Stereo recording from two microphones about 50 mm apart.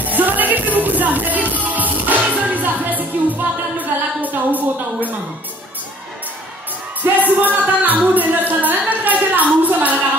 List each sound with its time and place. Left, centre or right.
0.0 s music: right
7.0 s music: right